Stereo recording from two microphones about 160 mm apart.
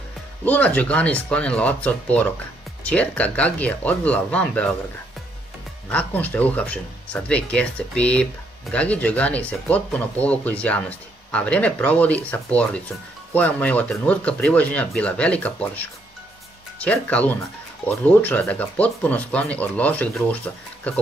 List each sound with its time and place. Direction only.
0.5 s speech: 10° left (ahead or behind)
5.9 s speech: 10° left (ahead or behind)